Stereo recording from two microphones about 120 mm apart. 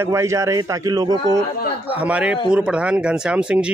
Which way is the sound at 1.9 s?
10° right (ahead or behind).